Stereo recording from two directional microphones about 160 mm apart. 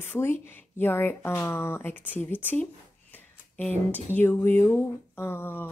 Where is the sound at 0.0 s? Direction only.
15° left (ahead or behind).